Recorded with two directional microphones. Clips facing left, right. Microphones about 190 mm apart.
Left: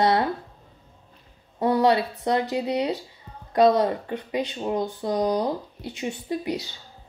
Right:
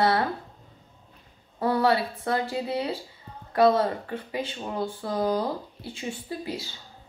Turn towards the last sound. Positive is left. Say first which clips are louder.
# left 5 dB
turn(degrees=20)  # may be behind; listen again after turning